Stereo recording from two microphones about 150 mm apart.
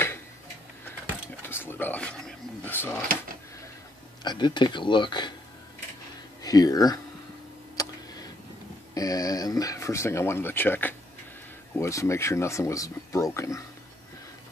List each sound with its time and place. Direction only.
1.4 s a sound: 15° left (ahead or behind)
4.2 s speech: 30° left (ahead or behind)
6.4 s speech: 25° left (ahead or behind)
7.7 s tick: 25° left (ahead or behind)
8.9 s speech: 25° left (ahead or behind)